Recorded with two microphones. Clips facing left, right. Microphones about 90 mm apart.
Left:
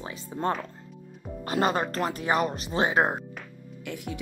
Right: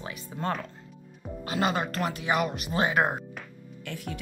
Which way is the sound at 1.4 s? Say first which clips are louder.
Left 2 dB; 40° left (ahead or behind).